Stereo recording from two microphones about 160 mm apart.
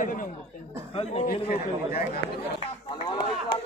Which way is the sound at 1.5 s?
75° left (ahead or behind).